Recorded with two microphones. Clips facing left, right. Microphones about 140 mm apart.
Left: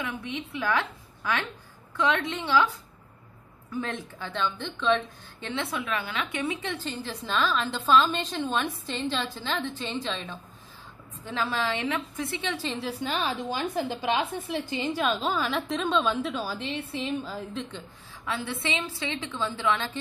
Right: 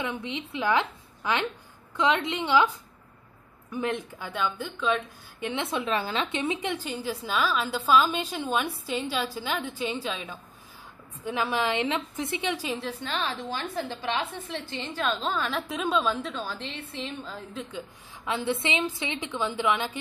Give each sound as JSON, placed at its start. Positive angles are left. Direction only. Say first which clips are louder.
{"t": 0.0, "sound": "a woman's voice", "louder": "right 1 dB", "side_deg": -20}
{"t": 3.7, "sound": "a woman's voice", "louder": "right 3 dB", "side_deg": -15}
{"t": 5.5, "sound": "a woman's voice", "louder": "right 2 dB", "side_deg": -20}
{"t": 12.7, "sound": "a woman's voice", "louder": "left 2 dB", "side_deg": 5}
{"t": 18.2, "sound": "a woman's voice", "louder": "right 3 dB", "side_deg": -20}